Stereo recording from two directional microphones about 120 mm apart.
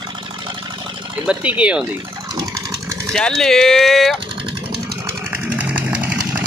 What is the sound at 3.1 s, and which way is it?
Speech, 5° left (ahead or behind).